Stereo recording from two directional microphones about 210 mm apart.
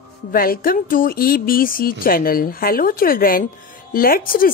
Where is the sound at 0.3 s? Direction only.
45° left (ahead or behind).